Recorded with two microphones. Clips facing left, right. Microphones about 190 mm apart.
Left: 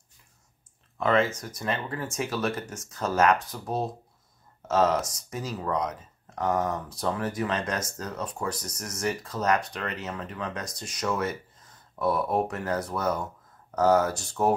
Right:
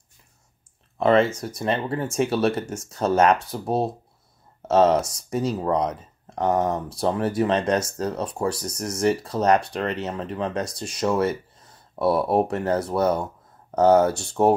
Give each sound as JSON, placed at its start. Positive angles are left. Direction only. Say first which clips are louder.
{"t": 0.9, "sound": "speech", "louder": "right 6 dB", "side_deg": -25}